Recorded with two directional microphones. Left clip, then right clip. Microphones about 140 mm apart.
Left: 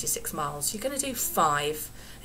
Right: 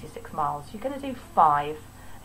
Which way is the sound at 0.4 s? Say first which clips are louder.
Right 5 dB; 15° left (ahead or behind).